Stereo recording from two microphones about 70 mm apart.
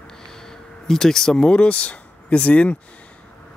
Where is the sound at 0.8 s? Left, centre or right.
Centre.